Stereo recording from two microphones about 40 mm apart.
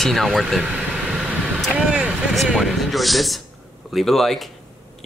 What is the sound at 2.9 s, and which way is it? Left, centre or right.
Speech, centre.